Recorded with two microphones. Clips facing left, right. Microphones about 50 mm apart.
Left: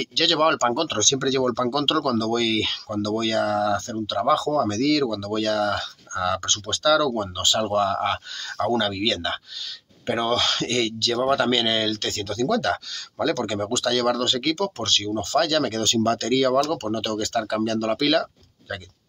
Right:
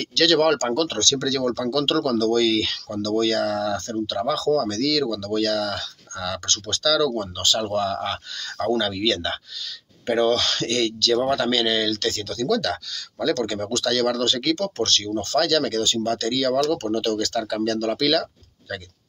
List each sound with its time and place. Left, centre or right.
0.0 s speech: centre
15.8 s speech: left
16.5 s speech: centre